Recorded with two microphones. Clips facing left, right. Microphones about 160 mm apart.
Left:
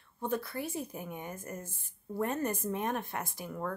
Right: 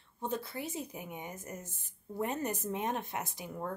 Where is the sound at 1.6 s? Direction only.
55° left (ahead or behind).